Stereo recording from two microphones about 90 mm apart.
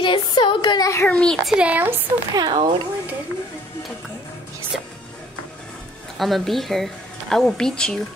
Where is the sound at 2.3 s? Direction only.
55° right (ahead or behind).